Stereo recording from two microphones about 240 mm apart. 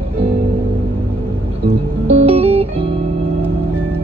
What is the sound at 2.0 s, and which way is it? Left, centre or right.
Music, right.